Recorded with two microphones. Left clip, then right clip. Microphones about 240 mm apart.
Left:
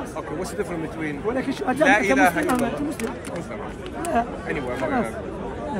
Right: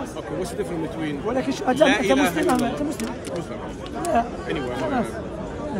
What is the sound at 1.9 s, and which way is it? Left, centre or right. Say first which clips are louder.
Speech: left 2 dB; centre.